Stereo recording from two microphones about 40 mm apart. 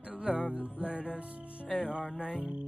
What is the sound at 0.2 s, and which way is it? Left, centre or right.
Music, right.